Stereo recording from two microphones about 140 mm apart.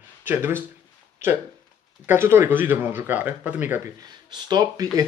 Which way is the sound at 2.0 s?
15° right (ahead or behind).